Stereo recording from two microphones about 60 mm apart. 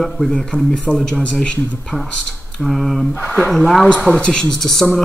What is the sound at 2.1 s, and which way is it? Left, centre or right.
Speech, centre.